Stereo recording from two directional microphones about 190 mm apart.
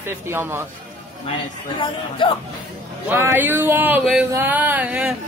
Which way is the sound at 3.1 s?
10° right (ahead or behind).